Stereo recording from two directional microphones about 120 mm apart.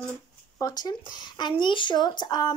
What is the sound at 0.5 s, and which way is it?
Speech, 30° left (ahead or behind).